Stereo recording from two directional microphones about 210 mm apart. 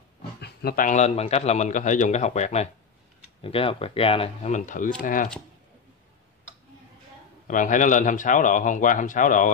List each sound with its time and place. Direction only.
0.4 s a man's voice: 50° left (ahead or behind)
7.4 s a man's voice: 40° left (ahead or behind)